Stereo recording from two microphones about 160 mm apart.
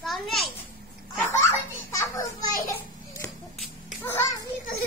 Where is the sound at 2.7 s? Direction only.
15° left (ahead or behind).